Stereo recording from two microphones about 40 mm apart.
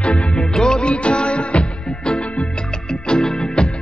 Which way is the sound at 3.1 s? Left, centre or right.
Centre.